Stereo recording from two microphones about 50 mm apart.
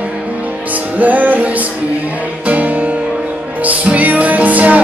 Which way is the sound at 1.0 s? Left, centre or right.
Right.